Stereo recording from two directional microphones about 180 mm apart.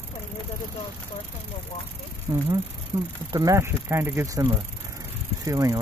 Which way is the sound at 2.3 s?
25° right (ahead or behind).